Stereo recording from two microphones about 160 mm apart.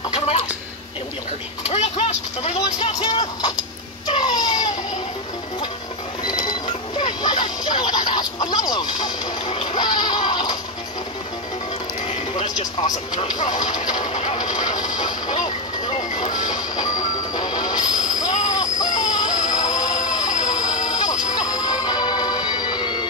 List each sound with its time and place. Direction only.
1.7 s speech: 45° left (ahead or behind)
2.5 s speech: 25° left (ahead or behind)
4.1 s cat: 25° left (ahead or behind)
6.2 s a sound: 25° left (ahead or behind)
8.1 s speech: 25° left (ahead or behind)
9.5 s goat: 30° left (ahead or behind)
12.5 s speech: 25° left (ahead or behind)
14.0 s speech: 45° left (ahead or behind)
16.0 s music: 50° left (ahead or behind)
16.5 s music: 25° left (ahead or behind)